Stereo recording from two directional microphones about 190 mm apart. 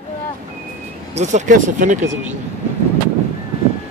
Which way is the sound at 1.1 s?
40° right (ahead or behind).